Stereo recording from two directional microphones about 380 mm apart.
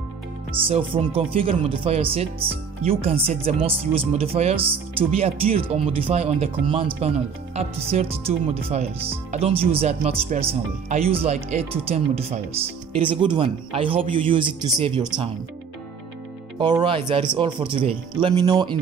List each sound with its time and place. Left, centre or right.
0.6 s speech: centre
16.5 s speech: centre